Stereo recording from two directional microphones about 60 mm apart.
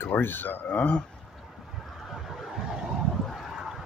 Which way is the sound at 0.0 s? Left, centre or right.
Left.